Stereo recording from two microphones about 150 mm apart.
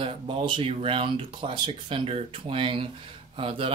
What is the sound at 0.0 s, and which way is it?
Speech, 35° right (ahead or behind).